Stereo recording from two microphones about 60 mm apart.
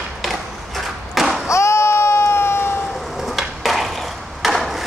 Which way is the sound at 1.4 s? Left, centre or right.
Left.